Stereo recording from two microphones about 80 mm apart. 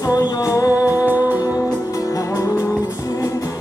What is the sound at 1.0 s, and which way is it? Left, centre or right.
Music, right.